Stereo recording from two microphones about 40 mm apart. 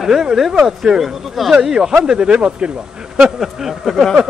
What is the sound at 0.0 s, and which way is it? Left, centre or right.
Speech, centre.